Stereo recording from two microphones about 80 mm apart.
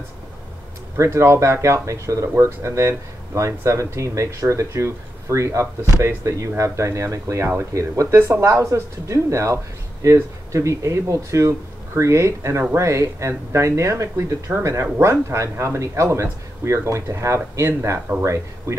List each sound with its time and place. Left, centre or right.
0.9 s speech: right